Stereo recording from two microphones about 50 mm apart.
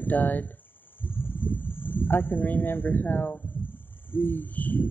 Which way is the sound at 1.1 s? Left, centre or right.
Left.